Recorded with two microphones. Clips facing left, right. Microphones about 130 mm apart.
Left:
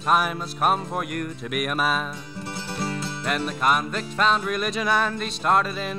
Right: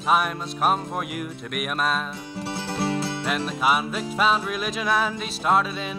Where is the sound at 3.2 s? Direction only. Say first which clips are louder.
Left 2 dB; centre (ahead or behind).